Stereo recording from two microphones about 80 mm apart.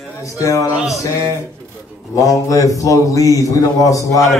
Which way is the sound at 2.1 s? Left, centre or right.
Left.